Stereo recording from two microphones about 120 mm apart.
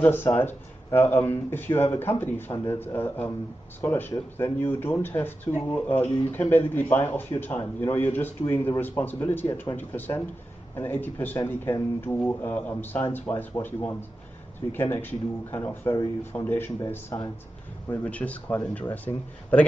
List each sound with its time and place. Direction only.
0.0 s speech: 20° left (ahead or behind)